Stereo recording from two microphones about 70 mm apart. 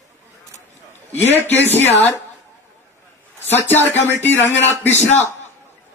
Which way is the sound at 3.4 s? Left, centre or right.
Left.